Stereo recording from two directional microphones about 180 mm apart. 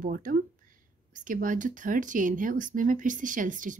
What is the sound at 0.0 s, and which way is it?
Speech, 50° right (ahead or behind).